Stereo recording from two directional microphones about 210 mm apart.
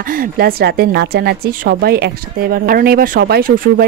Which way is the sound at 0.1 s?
45° right (ahead or behind).